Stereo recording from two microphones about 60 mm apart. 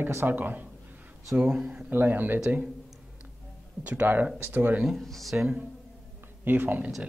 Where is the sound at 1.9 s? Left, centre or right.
Right.